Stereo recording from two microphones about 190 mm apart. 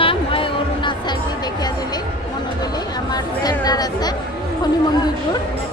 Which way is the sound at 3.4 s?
20° left (ahead or behind).